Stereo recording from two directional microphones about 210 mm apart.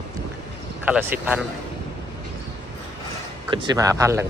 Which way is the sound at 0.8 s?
10° right (ahead or behind).